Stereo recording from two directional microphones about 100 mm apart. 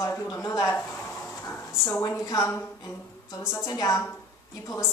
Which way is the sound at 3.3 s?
30° left (ahead or behind).